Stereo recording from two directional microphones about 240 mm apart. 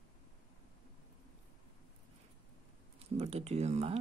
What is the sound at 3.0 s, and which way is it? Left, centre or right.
Speech, right.